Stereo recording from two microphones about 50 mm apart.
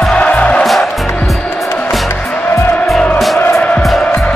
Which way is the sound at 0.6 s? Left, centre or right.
Centre.